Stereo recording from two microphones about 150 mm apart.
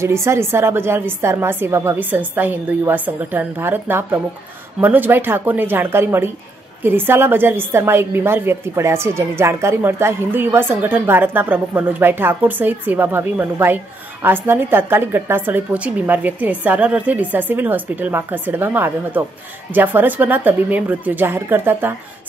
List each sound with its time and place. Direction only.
0.0 s a woman's voice: 20° right (ahead or behind)